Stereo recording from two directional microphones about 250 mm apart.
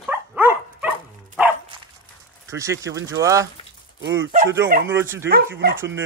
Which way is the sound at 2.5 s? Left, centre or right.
Centre.